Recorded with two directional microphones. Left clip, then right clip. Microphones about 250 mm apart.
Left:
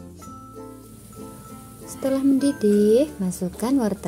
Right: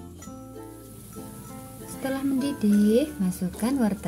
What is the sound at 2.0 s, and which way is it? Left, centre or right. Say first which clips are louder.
Speech: left 7 dB; centre.